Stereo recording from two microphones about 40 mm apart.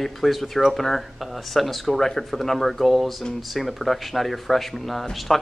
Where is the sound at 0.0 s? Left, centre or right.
Centre.